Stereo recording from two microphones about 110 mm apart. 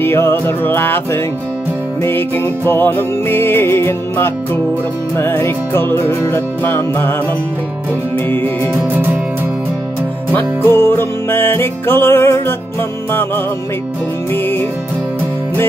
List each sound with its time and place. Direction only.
0.0 s music: 20° left (ahead or behind)
8.9 s music: 15° right (ahead or behind)
10.3 s music: 20° left (ahead or behind)